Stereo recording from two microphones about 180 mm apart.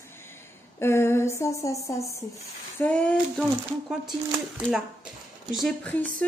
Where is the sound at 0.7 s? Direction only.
15° left (ahead or behind).